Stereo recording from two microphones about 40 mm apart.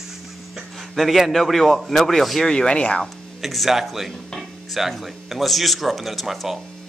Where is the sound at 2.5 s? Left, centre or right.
Left.